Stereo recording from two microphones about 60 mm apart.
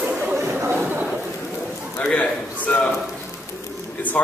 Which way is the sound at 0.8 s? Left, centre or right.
Right.